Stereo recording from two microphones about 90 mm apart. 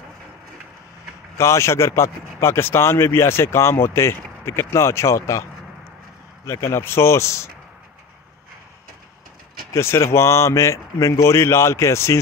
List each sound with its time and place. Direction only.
1.4 s speech: 30° left (ahead or behind)
6.4 s speech: 30° left (ahead or behind)
9.8 s speech: 30° left (ahead or behind)